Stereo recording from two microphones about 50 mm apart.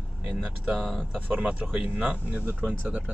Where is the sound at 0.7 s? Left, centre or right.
Centre.